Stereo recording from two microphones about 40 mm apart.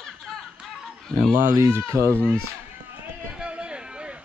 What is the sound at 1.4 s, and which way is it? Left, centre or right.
Speech, right.